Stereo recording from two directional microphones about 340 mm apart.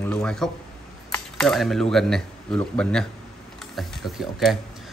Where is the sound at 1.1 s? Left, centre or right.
Centre.